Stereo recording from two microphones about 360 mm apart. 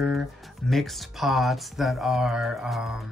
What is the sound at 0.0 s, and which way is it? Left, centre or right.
Speech, centre.